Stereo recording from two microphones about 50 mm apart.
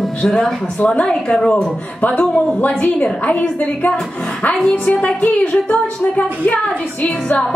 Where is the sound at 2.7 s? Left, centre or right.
Left.